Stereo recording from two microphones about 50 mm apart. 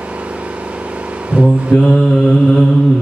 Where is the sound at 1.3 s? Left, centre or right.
Right.